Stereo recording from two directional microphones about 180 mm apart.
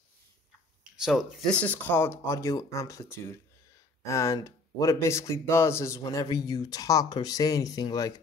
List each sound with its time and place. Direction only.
1.0 s speech: centre (ahead or behind); by 8.1 s 20° left (ahead or behind)